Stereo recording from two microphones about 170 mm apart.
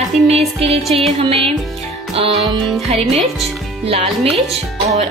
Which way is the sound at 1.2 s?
35° right (ahead or behind).